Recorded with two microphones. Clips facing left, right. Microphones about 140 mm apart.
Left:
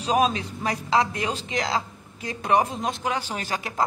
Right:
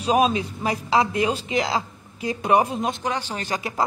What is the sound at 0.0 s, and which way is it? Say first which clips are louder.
Speech: right 3 dB; 10° right (ahead or behind).